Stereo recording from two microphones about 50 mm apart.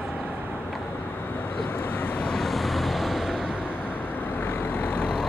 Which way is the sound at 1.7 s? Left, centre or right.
Left.